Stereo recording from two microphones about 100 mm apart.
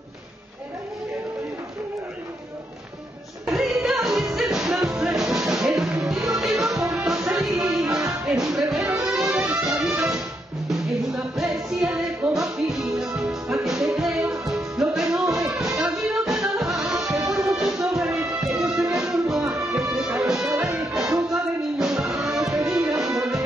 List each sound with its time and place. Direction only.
3.4 s music: 5° right (ahead or behind)
10.7 s music: 5° right (ahead or behind)